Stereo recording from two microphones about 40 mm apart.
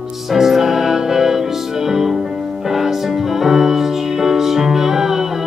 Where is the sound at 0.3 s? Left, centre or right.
Centre.